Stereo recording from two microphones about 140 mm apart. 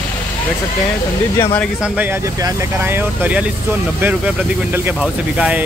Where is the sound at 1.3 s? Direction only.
20° left (ahead or behind).